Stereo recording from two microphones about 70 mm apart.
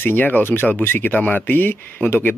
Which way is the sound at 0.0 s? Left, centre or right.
Left.